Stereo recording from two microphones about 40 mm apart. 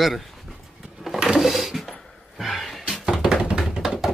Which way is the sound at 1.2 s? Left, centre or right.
Centre.